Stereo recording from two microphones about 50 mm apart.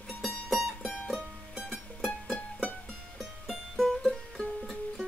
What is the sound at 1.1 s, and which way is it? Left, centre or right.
Music, centre.